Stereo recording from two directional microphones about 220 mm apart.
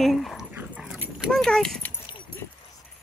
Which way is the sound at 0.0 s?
Centre (ahead or behind).